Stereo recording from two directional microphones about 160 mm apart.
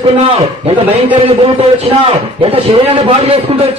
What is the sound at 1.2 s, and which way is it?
A man's voice, 35° right (ahead or behind).